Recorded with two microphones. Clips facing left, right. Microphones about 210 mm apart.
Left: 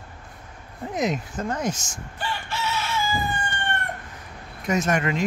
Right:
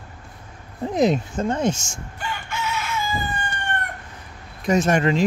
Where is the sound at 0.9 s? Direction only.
30° right (ahead or behind).